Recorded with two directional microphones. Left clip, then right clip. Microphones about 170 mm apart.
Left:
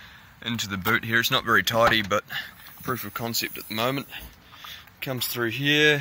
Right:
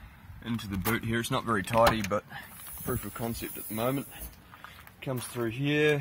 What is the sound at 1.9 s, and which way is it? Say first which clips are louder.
Speech: left 8 dB; 10° left (ahead or behind).